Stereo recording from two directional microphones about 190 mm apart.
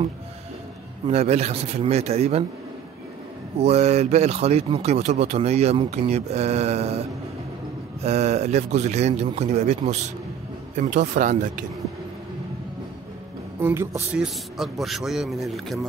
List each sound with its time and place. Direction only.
1.0 s speech: 35° right (ahead or behind)
3.5 s speech: 35° right (ahead or behind)
8.0 s speech: 35° right (ahead or behind)
13.6 s speech: 15° right (ahead or behind)
14.2 s a man's voice: centre (ahead or behind)